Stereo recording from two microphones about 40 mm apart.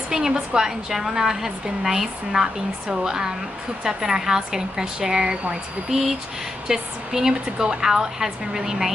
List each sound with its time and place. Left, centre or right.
0.1 s a woman's voice: centre
6.7 s a woman's voice: centre